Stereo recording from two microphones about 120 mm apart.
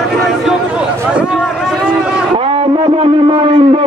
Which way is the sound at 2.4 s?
50° right (ahead or behind).